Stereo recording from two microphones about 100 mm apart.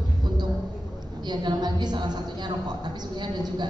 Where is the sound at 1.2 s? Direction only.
50° right (ahead or behind).